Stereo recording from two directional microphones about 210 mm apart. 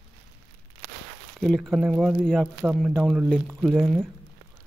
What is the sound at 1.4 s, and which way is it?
Speech, centre (ahead or behind).